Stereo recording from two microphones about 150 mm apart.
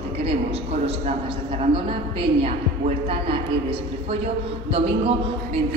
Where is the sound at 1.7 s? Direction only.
35° right (ahead or behind).